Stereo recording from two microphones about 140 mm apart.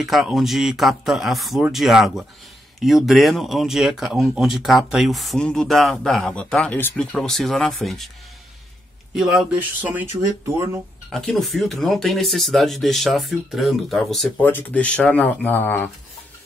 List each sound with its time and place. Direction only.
0.0 s speech: centre (ahead or behind)
9.1 s speech: 5° right (ahead or behind); by 10.8 s 20° right (ahead or behind)
11.1 s speech: centre (ahead or behind)
14.3 s speech: 15° left (ahead or behind)